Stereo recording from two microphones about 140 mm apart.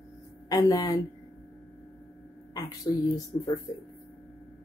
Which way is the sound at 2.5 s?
25° left (ahead or behind).